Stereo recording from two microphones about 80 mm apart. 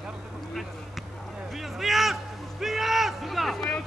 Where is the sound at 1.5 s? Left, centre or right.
Centre.